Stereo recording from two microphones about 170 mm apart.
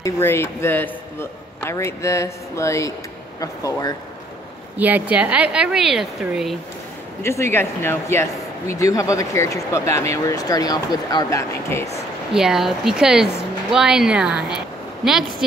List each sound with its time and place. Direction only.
0.0 s a man's voice: 15° left (ahead or behind)
4.7 s speech: 10° right (ahead or behind)
7.2 s a man's voice: 15° left (ahead or behind)
12.4 s speech: 5° right (ahead or behind)